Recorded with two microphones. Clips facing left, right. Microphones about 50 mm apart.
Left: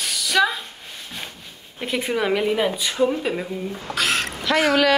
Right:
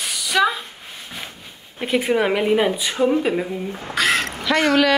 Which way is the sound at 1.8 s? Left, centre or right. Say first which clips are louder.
Right 4 dB; centre.